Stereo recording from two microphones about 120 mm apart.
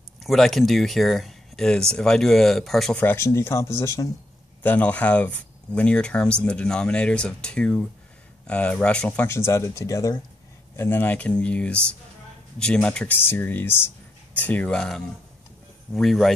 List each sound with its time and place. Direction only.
0.2 s speech: centre (ahead or behind)
3.0 s speech: 20° left (ahead or behind)
4.6 s speech: 15° left (ahead or behind)
9.3 s speech: 25° left (ahead or behind)
10.8 s speech: 15° left (ahead or behind)